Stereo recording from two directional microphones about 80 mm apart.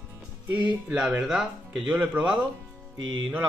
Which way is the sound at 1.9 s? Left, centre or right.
Centre.